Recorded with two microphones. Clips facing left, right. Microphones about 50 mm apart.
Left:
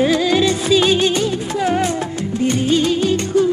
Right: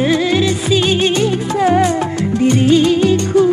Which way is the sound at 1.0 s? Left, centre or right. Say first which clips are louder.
Right 3 dB; right.